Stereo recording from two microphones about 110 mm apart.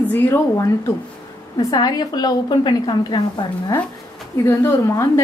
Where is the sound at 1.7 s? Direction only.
40° left (ahead or behind).